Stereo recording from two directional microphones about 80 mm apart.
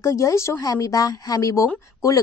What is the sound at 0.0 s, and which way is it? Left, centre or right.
A woman's voice, left.